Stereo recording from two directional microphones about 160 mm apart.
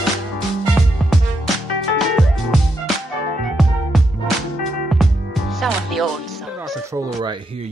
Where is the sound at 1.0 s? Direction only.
Centre (ahead or behind).